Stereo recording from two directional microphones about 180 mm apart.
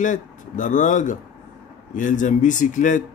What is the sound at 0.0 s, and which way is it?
A man's voice, 45° left (ahead or behind).